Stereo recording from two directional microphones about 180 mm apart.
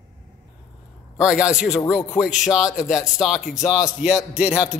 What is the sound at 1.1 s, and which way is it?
Speech, 5° right (ahead or behind).